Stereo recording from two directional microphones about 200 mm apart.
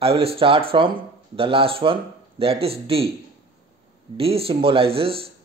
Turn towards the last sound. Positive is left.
turn(degrees=-30)  # may be behind; listen again after turning